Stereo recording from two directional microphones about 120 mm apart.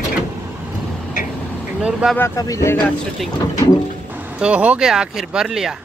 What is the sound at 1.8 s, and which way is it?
Speech, 10° right (ahead or behind).